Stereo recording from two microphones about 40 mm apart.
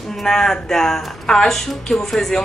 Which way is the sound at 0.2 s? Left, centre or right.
Centre.